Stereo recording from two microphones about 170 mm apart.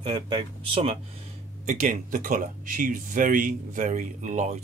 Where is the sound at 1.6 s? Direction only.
55° right (ahead or behind).